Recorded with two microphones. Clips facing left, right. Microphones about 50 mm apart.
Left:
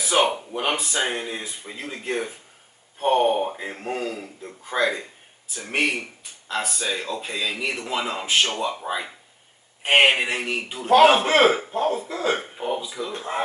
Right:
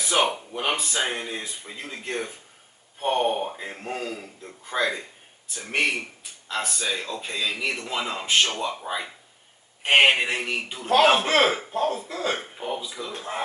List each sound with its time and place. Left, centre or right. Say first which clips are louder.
0.0 s a man's voice: left 2 dB; centre